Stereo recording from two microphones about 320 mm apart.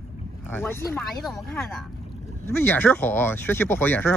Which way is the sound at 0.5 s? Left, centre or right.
Centre.